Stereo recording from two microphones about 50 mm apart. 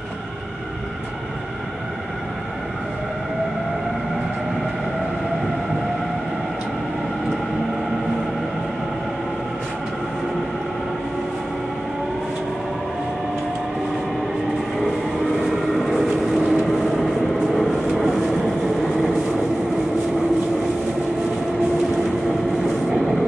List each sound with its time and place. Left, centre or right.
15.3 s vehicle: centre
16.3 s vehicle: centre
17.9 s vehicle: centre